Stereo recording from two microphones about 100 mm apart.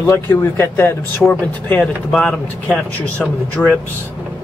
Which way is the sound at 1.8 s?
10° left (ahead or behind).